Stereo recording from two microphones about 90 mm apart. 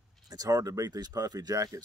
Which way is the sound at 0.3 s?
40° right (ahead or behind).